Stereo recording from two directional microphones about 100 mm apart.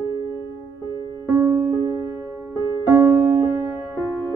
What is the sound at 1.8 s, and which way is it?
Music, 40° right (ahead or behind).